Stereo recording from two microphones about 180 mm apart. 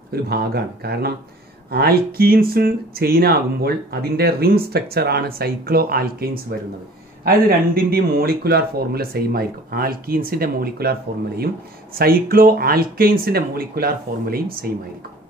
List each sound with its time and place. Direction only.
0.1 s speech: 60° right (ahead or behind)